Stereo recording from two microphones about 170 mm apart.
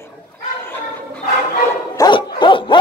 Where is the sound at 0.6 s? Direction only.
10° left (ahead or behind).